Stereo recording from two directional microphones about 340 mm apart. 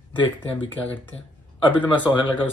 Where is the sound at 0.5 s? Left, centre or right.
Centre.